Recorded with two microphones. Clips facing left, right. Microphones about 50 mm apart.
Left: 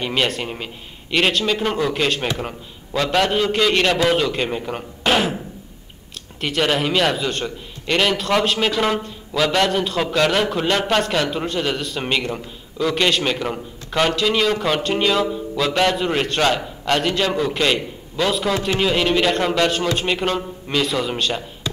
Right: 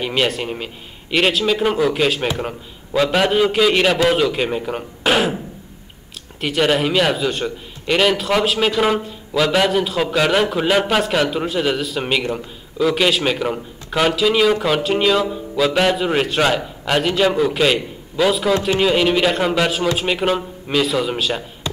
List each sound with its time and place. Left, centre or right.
0.0 s a man's voice: centre
6.4 s a man's voice: centre